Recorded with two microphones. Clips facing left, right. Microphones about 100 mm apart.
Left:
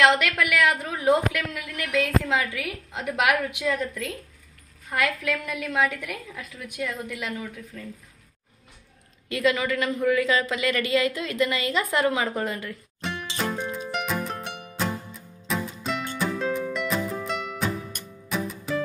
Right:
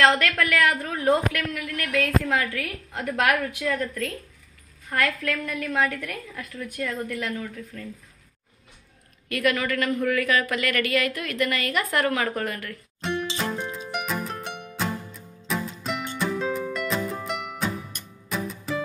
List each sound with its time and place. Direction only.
0.0 s a woman's voice: 15° left (ahead or behind)
9.3 s speech: 20° left (ahead or behind)
13.0 s music: centre (ahead or behind)